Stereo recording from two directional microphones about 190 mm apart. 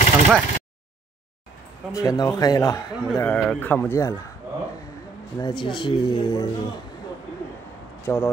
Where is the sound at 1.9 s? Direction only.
20° left (ahead or behind).